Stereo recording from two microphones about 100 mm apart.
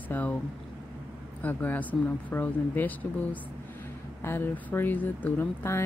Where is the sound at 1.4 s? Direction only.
15° left (ahead or behind).